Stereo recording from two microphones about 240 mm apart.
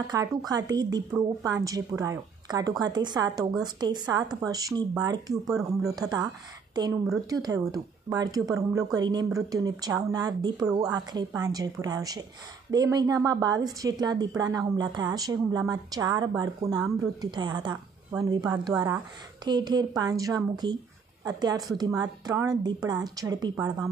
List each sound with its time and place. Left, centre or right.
0.1 s a woman's voice: centre